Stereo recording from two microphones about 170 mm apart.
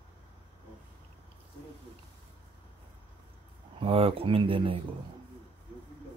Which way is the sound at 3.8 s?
35° right (ahead or behind).